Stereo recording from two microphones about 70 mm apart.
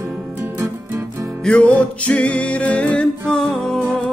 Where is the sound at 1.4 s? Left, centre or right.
Centre.